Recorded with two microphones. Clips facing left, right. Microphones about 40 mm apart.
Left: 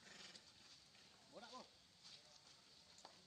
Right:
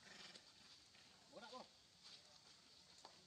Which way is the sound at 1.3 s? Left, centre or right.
Centre.